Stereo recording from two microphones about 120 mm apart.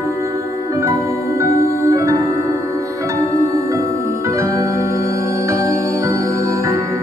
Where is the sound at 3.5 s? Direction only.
25° right (ahead or behind).